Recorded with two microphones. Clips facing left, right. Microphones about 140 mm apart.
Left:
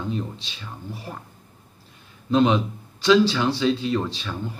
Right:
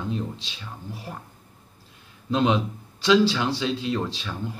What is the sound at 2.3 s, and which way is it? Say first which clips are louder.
Speech: left 3 dB; 5° right (ahead or behind).